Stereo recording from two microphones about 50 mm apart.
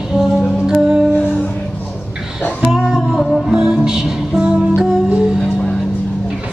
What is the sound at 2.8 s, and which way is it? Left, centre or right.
Music, centre.